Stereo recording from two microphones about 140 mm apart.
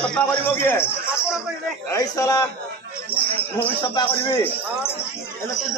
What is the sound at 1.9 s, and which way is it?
Speech, 25° left (ahead or behind).